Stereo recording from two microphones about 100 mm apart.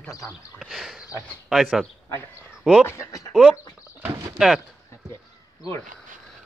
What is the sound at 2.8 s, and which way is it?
Speech, 30° left (ahead or behind).